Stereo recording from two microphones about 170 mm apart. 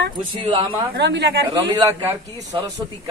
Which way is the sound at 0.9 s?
90° right.